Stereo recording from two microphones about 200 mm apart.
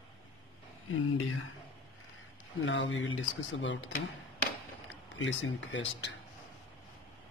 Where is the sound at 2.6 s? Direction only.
65° left (ahead or behind).